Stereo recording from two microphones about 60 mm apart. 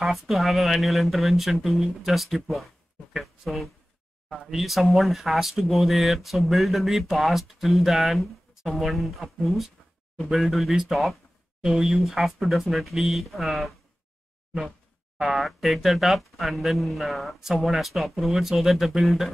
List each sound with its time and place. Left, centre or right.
0.0 s speech: centre
15.1 s speech: centre